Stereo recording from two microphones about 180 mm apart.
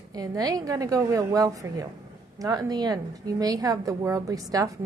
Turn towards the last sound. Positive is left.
turn(degrees=-20)  # may be behind; listen again after turning